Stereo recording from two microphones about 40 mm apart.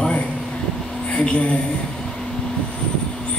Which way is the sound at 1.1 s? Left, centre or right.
Left.